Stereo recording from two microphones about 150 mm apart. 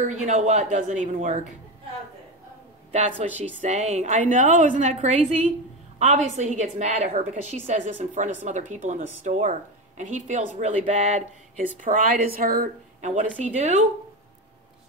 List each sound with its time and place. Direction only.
0.0 s a woman's voice: 50° right (ahead or behind)
2.9 s a woman's voice: 45° right (ahead or behind)
11.8 s a woman's voice: 65° right (ahead or behind)
13.0 s a woman's voice: 50° right (ahead or behind)